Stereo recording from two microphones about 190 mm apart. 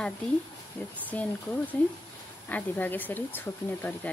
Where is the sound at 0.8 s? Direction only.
10° left (ahead or behind).